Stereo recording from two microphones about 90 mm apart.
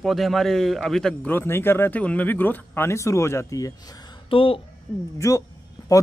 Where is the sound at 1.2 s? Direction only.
25° left (ahead or behind); by 4.0 s 40° left (ahead or behind).